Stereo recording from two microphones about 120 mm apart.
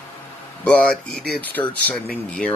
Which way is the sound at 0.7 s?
10° left (ahead or behind).